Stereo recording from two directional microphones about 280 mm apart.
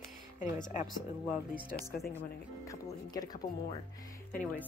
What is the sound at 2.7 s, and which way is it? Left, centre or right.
Speech, centre.